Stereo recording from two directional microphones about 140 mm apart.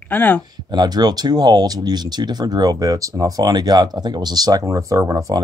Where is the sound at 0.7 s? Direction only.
30° right (ahead or behind).